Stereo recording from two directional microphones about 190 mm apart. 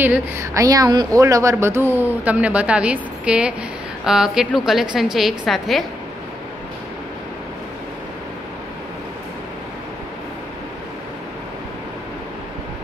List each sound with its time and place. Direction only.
0.0 s a woman's voice: 10° right (ahead or behind)